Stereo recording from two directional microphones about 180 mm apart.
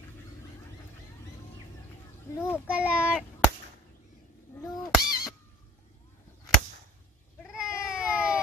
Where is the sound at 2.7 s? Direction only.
5° right (ahead or behind).